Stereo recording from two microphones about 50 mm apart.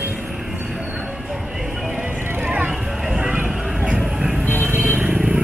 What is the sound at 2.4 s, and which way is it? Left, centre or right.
Vehicle, right.